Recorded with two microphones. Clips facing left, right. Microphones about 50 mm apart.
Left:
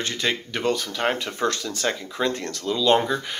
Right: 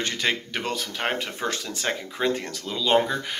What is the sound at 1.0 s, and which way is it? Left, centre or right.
Speech, centre.